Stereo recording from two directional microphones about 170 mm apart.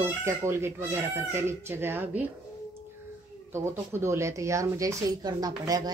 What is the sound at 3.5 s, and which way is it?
Speech, 15° right (ahead or behind).